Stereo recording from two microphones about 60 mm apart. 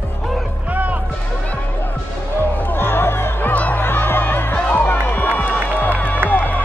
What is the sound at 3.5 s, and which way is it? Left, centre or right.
Music, left.